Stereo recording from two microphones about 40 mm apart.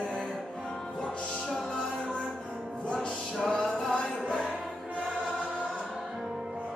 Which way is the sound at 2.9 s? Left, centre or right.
Centre.